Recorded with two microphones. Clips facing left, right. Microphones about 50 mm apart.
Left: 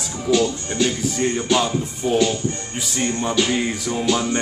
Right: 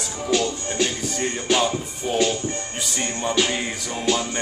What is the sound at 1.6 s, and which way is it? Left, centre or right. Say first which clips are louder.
Music: left 2 dB; centre.